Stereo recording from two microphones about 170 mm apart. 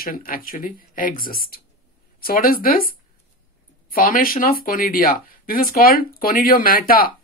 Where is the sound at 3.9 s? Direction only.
55° left (ahead or behind).